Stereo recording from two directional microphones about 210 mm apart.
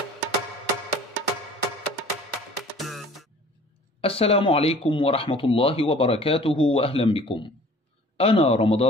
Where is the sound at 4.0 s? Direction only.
25° left (ahead or behind).